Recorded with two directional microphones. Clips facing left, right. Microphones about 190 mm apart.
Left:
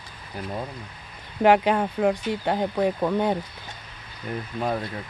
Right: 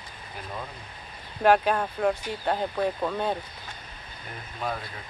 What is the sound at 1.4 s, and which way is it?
Speech, 15° left (ahead or behind).